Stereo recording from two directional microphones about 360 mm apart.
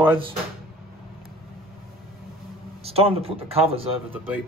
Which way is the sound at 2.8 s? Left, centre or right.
Centre.